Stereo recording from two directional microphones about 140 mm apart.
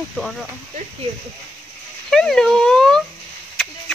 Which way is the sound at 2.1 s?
5° left (ahead or behind).